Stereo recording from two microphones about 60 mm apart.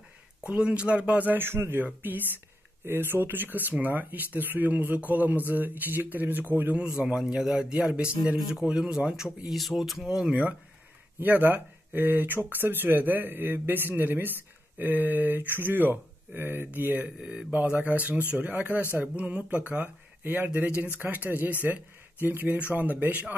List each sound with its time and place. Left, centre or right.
0.5 s speech: centre
7.0 s speech: centre
7.9 s speech: right
11.1 s speech: right